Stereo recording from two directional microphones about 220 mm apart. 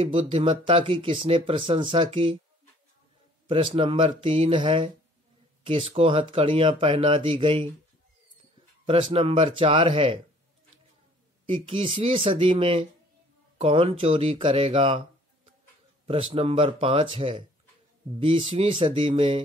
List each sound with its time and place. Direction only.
0.0 s speech: 30° right (ahead or behind)
3.4 s speech: 25° right (ahead or behind)
8.8 s speech: 25° right (ahead or behind)
11.4 s speech: 25° right (ahead or behind)
16.1 s speech: 25° right (ahead or behind)